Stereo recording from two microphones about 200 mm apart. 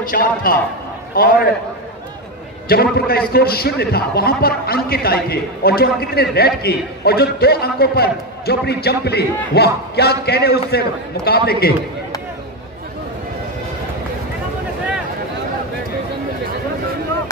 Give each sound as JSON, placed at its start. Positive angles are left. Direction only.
{"t": 0.1, "sound": "a man's voice", "side_deg": 45}
{"t": 2.7, "sound": "a man's voice", "side_deg": 50}